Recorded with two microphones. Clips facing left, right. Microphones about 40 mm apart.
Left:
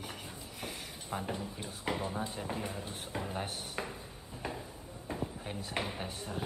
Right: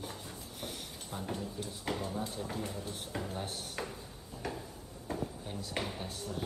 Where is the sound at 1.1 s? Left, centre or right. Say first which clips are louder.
Left 1 dB; left.